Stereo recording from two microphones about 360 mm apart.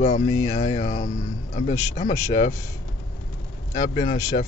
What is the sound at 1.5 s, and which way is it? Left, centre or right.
Speech, centre.